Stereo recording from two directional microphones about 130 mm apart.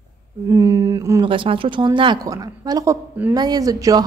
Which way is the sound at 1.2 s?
40° right (ahead or behind).